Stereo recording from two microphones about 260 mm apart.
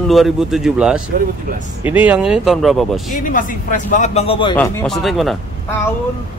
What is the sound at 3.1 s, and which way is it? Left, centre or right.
Speech, left.